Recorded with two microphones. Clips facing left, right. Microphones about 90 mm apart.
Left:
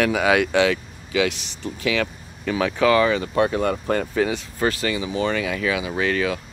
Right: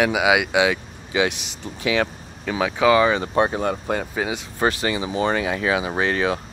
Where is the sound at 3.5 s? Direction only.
15° right (ahead or behind).